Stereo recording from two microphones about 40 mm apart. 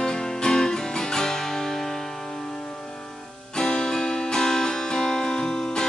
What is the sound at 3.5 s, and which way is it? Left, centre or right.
Music, centre.